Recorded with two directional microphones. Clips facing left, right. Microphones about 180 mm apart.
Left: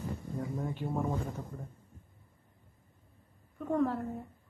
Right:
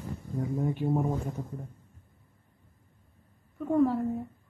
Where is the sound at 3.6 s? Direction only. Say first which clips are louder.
Right 5 dB; 5° right (ahead or behind).